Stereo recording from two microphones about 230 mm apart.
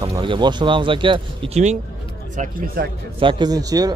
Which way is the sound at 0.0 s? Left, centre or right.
Centre.